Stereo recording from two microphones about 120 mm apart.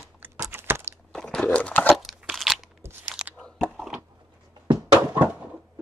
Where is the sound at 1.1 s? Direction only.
5° left (ahead or behind).